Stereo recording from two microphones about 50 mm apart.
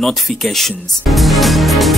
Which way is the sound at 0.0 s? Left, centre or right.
Centre.